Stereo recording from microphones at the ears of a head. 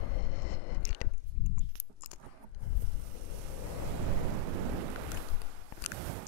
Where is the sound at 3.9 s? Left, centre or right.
Right.